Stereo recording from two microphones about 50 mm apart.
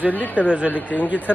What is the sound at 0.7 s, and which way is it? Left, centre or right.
Speech, left.